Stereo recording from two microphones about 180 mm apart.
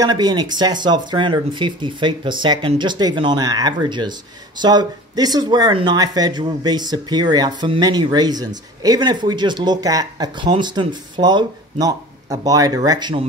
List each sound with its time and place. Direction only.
0.0 s speech: 25° right (ahead or behind)